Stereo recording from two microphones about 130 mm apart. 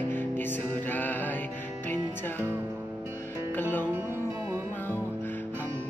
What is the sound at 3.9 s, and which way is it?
Music, 15° right (ahead or behind).